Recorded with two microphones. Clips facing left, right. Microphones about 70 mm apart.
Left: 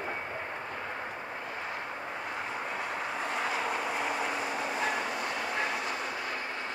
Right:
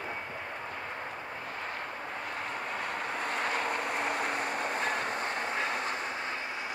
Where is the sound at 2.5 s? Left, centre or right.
Right.